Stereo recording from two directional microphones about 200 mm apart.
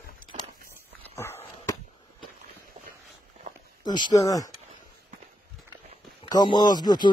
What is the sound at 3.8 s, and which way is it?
Speech, 20° left (ahead or behind).